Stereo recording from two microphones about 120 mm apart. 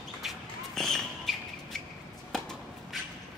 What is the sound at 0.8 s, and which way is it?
Basketball bounce, centre (ahead or behind).